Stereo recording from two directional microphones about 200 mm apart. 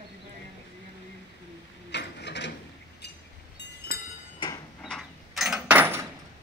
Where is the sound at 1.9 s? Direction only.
60° left (ahead or behind).